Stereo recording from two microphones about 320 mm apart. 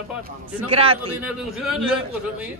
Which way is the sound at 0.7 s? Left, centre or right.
Centre.